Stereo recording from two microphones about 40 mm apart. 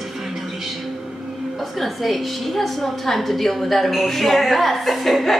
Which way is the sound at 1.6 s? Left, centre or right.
Centre.